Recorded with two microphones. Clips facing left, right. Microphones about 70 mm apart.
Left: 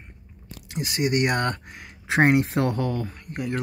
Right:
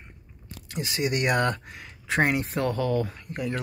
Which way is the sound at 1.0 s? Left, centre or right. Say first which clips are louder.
Left 1 dB; centre.